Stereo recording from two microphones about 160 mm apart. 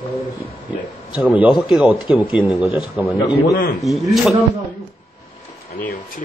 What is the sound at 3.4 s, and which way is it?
Speech, 65° left (ahead or behind).